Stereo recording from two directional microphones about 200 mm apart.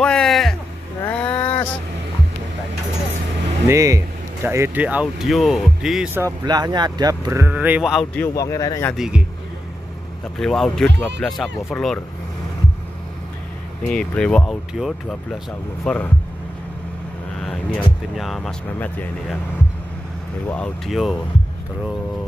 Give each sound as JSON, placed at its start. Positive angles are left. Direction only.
{"t": 0.0, "sound": "music", "side_deg": 0}
{"t": 1.0, "sound": "a sound", "side_deg": 5}
{"t": 3.6, "sound": "speech", "side_deg": -15}
{"t": 6.2, "sound": "speech", "side_deg": -20}
{"t": 8.4, "sound": "speech", "side_deg": 15}
{"t": 8.9, "sound": "speech", "side_deg": -5}
{"t": 10.4, "sound": "speech", "side_deg": 0}
{"t": 13.8, "sound": "speech", "side_deg": 5}
{"t": 17.7, "sound": "speech", "side_deg": 0}
{"t": 20.4, "sound": "speech", "side_deg": 5}